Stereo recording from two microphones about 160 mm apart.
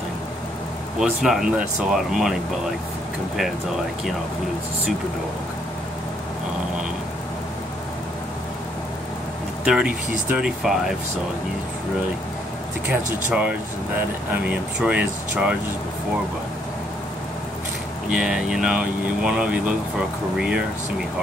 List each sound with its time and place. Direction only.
0.9 s speech: 5° right (ahead or behind)
9.7 s speech: 5° right (ahead or behind)
12.8 s speech: 10° right (ahead or behind)
18.1 s speech: 5° right (ahead or behind)